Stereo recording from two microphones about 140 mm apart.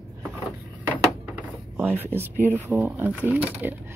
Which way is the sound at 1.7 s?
15° right (ahead or behind).